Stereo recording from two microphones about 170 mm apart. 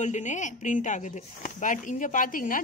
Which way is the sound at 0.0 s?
45° left (ahead or behind).